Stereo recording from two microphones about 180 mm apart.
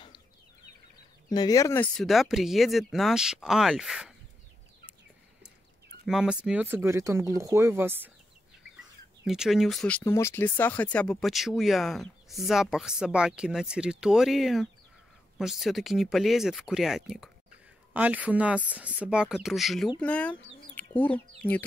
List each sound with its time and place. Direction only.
1.3 s speech: 20° left (ahead or behind)
2.0 s speech: centre (ahead or behind)
6.0 s speech: 5° right (ahead or behind)
9.2 s speech: 5° right (ahead or behind)